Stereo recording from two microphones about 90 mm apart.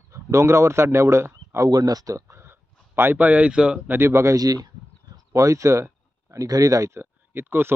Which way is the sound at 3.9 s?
30° right (ahead or behind).